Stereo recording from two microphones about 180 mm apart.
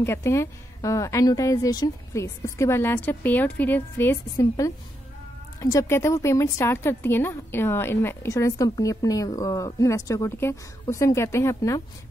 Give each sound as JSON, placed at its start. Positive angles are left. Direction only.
{"t": 0.0, "sound": "a woman's voice", "side_deg": 15}